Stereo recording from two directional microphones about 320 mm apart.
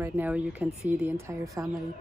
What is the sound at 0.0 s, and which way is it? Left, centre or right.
Speech, centre.